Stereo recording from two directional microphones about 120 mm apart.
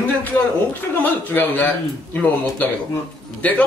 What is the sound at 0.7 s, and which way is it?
A man's voice, 15° left (ahead or behind).